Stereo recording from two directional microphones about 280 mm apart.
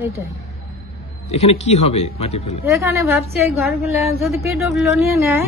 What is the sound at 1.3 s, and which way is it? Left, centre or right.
Speech, left.